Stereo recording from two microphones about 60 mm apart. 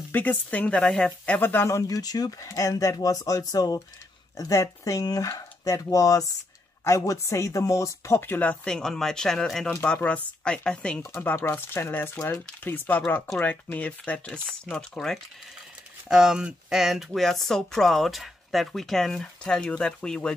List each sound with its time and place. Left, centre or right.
0.1 s speech: left
1.4 s speech: left
1.7 s speech: left
4.4 s speech: left
6.8 s speech: left
8.6 s speech: centre
10.0 s speech: centre
11.4 s speech: left; by 15.1 s centre
16.1 s speech: centre